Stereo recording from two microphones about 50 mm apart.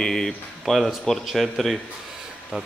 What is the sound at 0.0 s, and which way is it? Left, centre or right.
A man's voice, centre.